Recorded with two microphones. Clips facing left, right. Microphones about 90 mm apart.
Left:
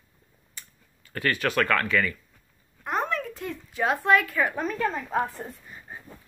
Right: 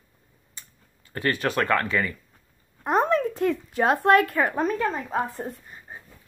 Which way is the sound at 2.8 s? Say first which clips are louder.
Right 7 dB; 35° right (ahead or behind).